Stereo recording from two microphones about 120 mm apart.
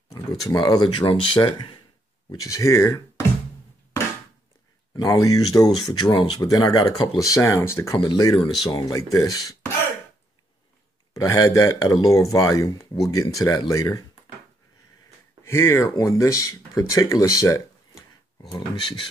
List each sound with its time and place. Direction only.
0.5 s speech: 35° left (ahead or behind)
2.4 s speech: 25° left (ahead or behind)
4.9 s a man's voice: 30° left (ahead or behind)
5.9 s speech: 40° left (ahead or behind); by 8.0 s 20° left (ahead or behind)
8.0 s speech: 35° left (ahead or behind)
11.1 s a man's voice: 25° left (ahead or behind)
15.4 s speech: 20° left (ahead or behind)
18.5 s speech: 45° left (ahead or behind)